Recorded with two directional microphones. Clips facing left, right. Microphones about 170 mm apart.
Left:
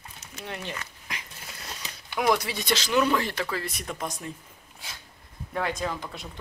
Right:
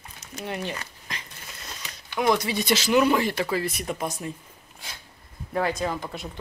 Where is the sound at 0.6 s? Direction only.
35° right (ahead or behind).